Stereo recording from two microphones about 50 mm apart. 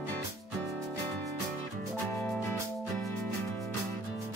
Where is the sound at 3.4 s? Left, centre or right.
Left.